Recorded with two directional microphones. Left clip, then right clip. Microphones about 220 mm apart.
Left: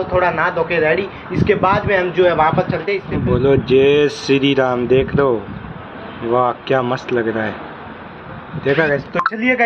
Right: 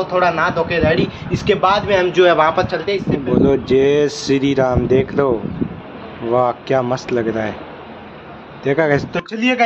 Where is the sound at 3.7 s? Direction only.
Centre (ahead or behind).